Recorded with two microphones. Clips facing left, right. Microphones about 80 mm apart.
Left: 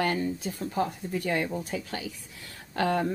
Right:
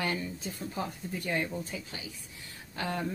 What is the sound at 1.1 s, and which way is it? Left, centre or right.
Speech, left.